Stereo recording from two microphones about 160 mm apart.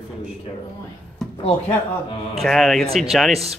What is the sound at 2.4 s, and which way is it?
Speech, centre (ahead or behind).